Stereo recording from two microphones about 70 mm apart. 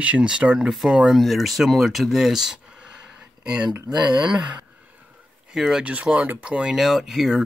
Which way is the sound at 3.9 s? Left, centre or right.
Centre.